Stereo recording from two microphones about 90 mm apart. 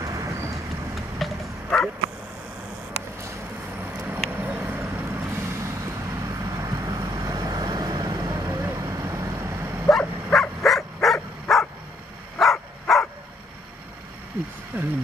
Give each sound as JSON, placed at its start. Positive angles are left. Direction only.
{"t": 0.0, "sound": "vehicle", "side_deg": -35}
{"t": 0.9, "sound": "vehicle", "side_deg": 0}
{"t": 4.0, "sound": "vehicle", "side_deg": -20}
{"t": 8.8, "sound": "dog", "side_deg": -30}
{"t": 9.8, "sound": "bow-wow", "side_deg": 5}
{"t": 10.6, "sound": "dog", "side_deg": 0}
{"t": 12.4, "sound": "a sound", "side_deg": 0}
{"t": 14.7, "sound": "speech", "side_deg": -25}